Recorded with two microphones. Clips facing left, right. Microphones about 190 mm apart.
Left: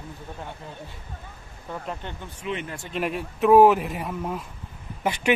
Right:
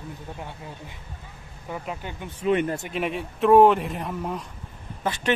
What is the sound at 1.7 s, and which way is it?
Speech, 10° right (ahead or behind).